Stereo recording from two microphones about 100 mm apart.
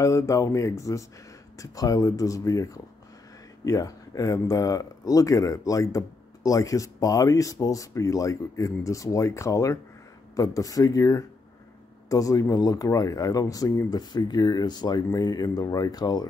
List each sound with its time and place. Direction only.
0.0 s speech: 30° left (ahead or behind)